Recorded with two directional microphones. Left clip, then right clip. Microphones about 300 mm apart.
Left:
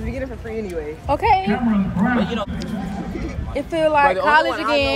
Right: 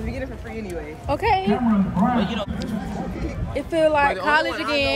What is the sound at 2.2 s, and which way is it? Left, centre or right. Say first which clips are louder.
Speech: left 2 dB; centre.